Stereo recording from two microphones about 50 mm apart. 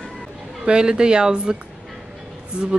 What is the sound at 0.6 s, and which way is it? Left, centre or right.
Speech, centre.